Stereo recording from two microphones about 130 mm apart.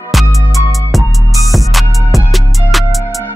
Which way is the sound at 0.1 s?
Centre (ahead or behind).